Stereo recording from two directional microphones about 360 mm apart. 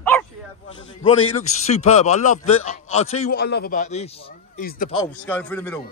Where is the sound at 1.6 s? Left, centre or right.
Centre.